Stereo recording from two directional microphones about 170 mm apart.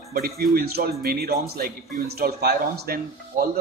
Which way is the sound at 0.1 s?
60° right (ahead or behind).